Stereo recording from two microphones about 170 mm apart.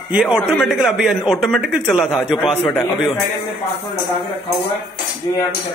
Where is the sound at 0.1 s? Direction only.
5° right (ahead or behind).